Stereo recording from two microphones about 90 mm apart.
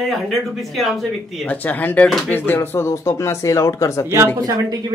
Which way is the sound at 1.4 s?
20° left (ahead or behind).